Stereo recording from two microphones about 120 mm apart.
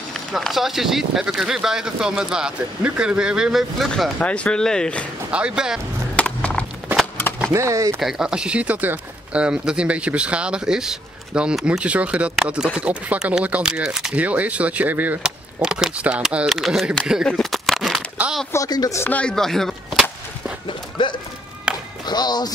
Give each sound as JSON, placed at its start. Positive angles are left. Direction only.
{"t": 0.1, "sound": "speech", "side_deg": 0}
{"t": 5.3, "sound": "speech", "side_deg": -10}
{"t": 6.1, "sound": "music", "side_deg": 10}
{"t": 7.5, "sound": "speech", "side_deg": -25}
{"t": 8.0, "sound": "speech", "side_deg": -5}
{"t": 17.3, "sound": "a sound", "side_deg": 0}
{"t": 18.1, "sound": "a sound", "side_deg": -10}
{"t": 18.5, "sound": "speech", "side_deg": 30}
{"t": 19.0, "sound": "whip", "side_deg": 10}
{"t": 21.0, "sound": "speech", "side_deg": 40}
{"t": 21.7, "sound": "music", "side_deg": -5}
{"t": 22.0, "sound": "speech", "side_deg": 35}